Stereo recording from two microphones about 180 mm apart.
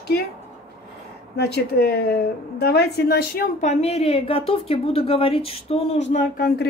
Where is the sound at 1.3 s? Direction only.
65° left (ahead or behind).